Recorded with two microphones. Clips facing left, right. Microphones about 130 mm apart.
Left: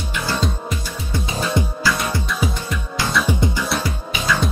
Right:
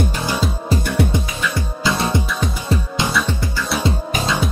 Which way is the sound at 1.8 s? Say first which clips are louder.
Right 3 dB; 25° right (ahead or behind).